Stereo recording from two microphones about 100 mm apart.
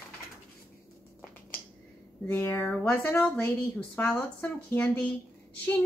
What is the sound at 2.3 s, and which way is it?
A woman's voice, 20° left (ahead or behind).